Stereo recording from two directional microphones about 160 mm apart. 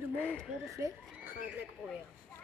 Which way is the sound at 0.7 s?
15° right (ahead or behind).